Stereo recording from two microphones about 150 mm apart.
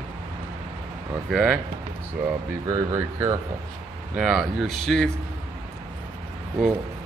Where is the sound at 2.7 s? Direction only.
20° right (ahead or behind).